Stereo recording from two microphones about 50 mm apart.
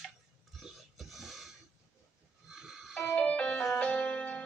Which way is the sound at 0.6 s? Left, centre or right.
Centre.